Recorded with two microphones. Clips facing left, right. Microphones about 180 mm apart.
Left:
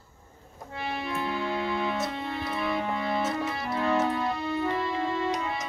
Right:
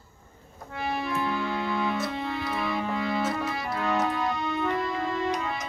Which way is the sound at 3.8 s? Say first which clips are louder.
Left 1 dB; 25° left (ahead or behind).